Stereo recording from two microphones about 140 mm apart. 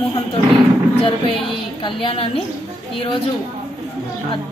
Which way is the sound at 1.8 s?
35° left (ahead or behind).